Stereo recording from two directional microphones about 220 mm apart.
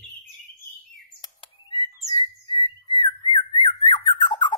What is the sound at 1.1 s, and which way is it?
Bird, 20° left (ahead or behind).